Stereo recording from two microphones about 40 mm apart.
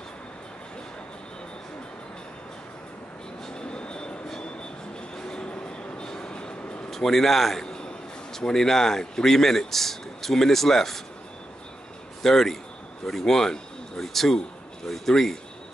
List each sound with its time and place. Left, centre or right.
3.4 s vehicle: left
5.5 s train: left
6.9 s a man's voice: centre
12.2 s a man's voice: centre